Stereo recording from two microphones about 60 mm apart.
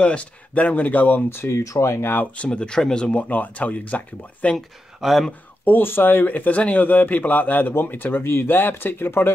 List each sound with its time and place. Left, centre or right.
0.0 s speech: centre
1.4 s speech: left
2.0 s speech: left
2.3 s speech: centre
3.3 s speech: left
4.6 s speech: centre
5.7 s speech: left